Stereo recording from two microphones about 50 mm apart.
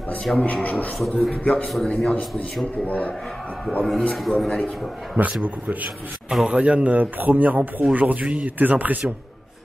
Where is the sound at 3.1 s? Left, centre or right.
Centre.